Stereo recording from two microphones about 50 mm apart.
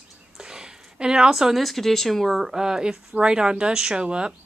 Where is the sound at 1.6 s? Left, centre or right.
Centre.